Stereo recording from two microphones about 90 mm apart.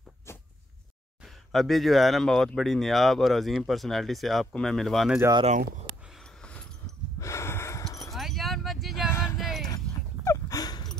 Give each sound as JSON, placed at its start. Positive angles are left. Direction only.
{"t": 1.2, "sound": "speech", "side_deg": 0}
{"t": 7.2, "sound": "gasp", "side_deg": 35}
{"t": 8.1, "sound": "a sound", "side_deg": 0}
{"t": 9.1, "sound": "music", "side_deg": 30}
{"t": 9.4, "sound": "music", "side_deg": 0}
{"t": 9.7, "sound": "a sound", "side_deg": 40}